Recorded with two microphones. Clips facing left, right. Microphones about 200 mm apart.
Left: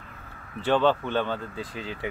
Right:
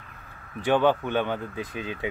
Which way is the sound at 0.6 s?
15° right (ahead or behind).